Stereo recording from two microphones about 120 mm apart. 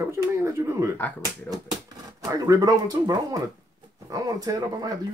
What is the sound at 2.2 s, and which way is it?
Speech, 30° right (ahead or behind).